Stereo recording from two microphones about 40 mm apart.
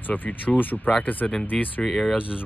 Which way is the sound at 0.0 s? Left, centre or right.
Left.